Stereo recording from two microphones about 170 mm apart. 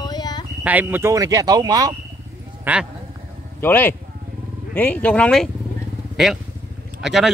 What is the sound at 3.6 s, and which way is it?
Speech, 10° left (ahead or behind).